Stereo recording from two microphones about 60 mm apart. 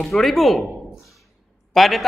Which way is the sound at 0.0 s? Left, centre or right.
Centre.